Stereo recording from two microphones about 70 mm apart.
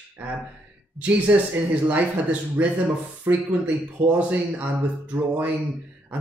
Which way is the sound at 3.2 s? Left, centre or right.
Right.